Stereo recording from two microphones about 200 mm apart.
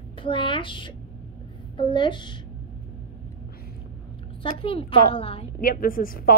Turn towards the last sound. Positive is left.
turn(degrees=45)  # may be behind; listen again after turning